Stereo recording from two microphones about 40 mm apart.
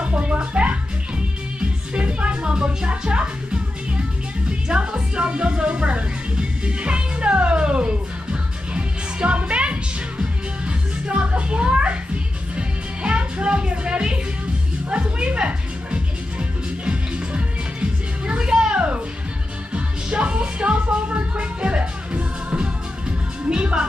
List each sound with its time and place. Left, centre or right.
0.0 s music: right
18.4 s a sound: centre
19.7 s music: right